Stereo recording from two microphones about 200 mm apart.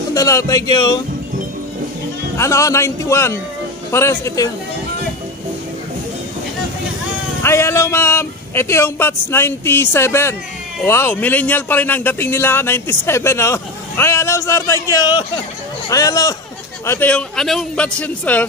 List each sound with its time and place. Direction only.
0.1 s speech: 15° left (ahead or behind)
2.3 s speech: 15° left (ahead or behind)
7.4 s a man's voice: 15° left (ahead or behind)